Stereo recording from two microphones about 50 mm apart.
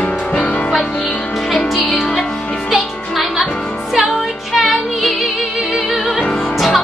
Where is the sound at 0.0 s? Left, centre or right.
Left.